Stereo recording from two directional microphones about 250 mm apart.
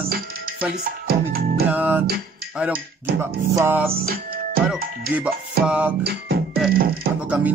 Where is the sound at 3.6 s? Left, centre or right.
Centre.